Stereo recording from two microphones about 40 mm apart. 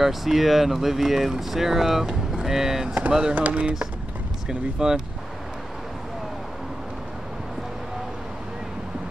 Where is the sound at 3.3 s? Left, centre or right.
Right.